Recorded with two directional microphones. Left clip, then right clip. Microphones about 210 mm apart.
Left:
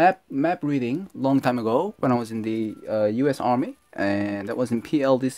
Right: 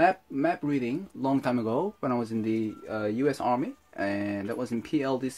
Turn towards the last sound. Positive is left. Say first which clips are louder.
# left 8 dB
turn(degrees=50)  # may be behind; listen again after turning